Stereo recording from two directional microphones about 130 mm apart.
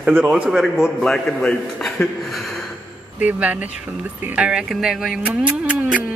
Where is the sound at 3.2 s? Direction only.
10° right (ahead or behind).